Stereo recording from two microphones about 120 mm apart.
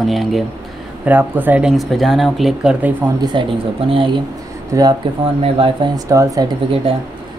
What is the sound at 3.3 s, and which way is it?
Speech, 45° right (ahead or behind).